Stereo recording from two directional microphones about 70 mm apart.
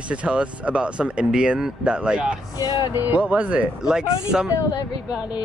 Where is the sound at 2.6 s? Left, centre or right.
Left.